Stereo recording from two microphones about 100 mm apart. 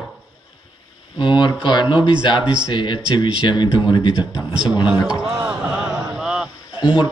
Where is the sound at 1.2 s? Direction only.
50° left (ahead or behind).